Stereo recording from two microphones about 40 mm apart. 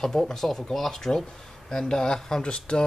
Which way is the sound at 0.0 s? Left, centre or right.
Centre.